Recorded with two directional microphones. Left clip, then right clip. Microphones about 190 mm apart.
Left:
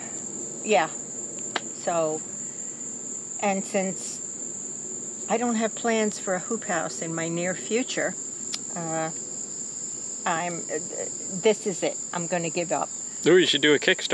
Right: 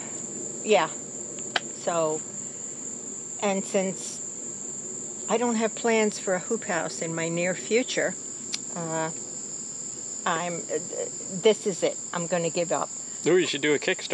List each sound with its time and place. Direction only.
0.7 s speech: 10° right (ahead or behind)
1.5 s cricket: 5° right (ahead or behind)
3.3 s speech: 5° right (ahead or behind)
5.3 s speech: 10° right (ahead or behind)
10.2 s cricket: 5° right (ahead or behind)
13.2 s speech: 40° left (ahead or behind)